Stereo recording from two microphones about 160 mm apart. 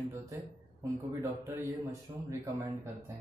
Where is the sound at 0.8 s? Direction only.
15° right (ahead or behind).